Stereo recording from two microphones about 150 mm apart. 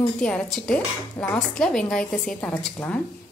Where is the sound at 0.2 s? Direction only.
5° left (ahead or behind).